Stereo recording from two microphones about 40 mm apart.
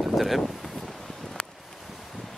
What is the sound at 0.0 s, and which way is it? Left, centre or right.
Wind, centre.